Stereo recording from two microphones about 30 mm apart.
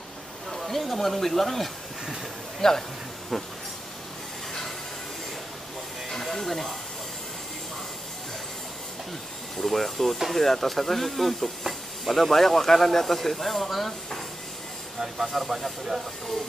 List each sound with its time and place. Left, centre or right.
0.5 s speech: centre
2.6 s speech: centre
6.2 s speech: centre
9.6 s speech: centre